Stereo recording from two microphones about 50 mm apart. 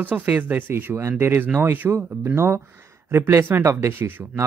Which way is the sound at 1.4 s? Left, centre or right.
Right.